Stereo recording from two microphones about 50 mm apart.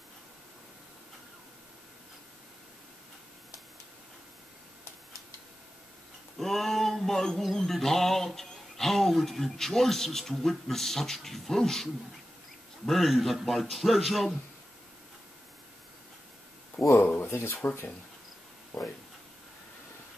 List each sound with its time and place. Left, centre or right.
6.3 s a sound: centre
12.8 s a man's voice: centre
17.2 s speech: left